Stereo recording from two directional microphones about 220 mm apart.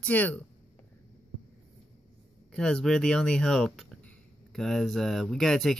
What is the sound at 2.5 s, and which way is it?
A woman's voice, 5° left (ahead or behind).